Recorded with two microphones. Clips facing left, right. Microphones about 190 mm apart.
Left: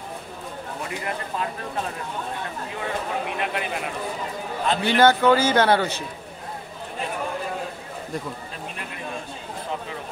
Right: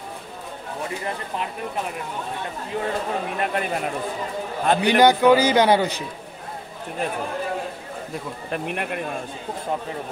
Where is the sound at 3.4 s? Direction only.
45° right (ahead or behind).